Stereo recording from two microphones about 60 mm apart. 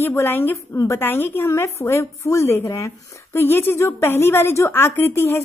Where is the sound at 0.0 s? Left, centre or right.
Left.